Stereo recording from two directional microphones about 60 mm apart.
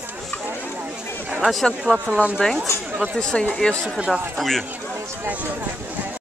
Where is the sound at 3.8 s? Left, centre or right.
Centre.